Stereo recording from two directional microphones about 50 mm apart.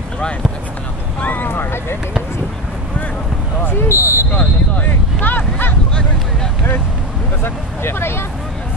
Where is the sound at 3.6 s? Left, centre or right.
Left.